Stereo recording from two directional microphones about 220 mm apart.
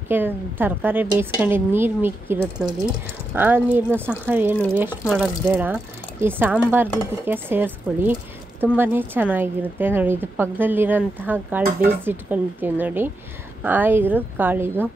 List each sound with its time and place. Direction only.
0.1 s a woman's voice: 10° right (ahead or behind)